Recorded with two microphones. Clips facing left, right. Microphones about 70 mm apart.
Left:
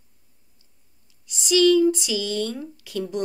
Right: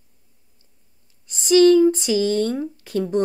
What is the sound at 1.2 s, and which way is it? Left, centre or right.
Speech, right.